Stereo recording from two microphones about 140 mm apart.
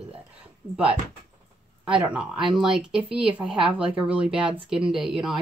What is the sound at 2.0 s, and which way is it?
Speech, 5° right (ahead or behind).